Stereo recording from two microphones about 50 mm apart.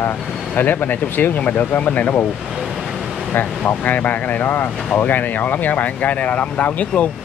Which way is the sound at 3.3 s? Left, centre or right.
Left.